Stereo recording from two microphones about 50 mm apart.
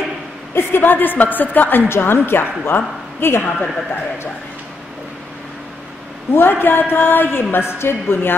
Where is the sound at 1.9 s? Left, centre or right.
Left.